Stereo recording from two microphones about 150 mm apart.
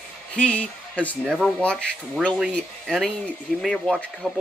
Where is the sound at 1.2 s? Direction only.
5° right (ahead or behind).